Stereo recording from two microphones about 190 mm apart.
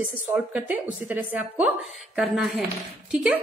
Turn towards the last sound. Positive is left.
turn(degrees=-5)  # may be behind; listen again after turning